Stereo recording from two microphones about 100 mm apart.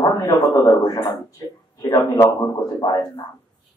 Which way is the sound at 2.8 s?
40° left (ahead or behind).